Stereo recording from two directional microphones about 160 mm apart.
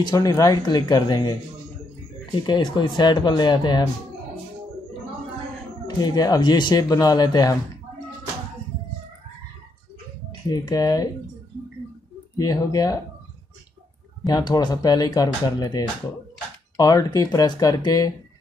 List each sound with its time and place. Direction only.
0.0 s speech: 20° left (ahead or behind)
2.4 s speech: 30° left (ahead or behind)
5.9 s speech: 25° left (ahead or behind)
10.5 s speech: 25° left (ahead or behind)
12.4 s speech: 25° left (ahead or behind)
14.2 s speech: 25° left (ahead or behind)